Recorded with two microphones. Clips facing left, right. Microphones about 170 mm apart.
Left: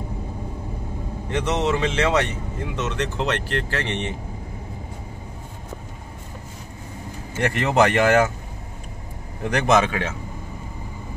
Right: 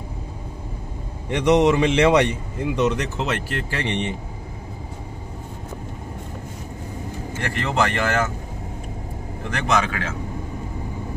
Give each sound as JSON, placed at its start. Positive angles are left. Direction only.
{"t": 1.3, "sound": "a man's voice", "side_deg": -15}
{"t": 7.5, "sound": "speech", "side_deg": 20}
{"t": 9.5, "sound": "speech", "side_deg": 20}